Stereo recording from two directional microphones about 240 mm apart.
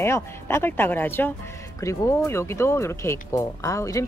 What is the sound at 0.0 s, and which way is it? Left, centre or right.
Speech, centre.